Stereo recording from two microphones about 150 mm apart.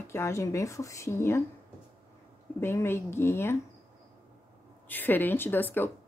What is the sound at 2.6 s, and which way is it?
Speech, 15° left (ahead or behind).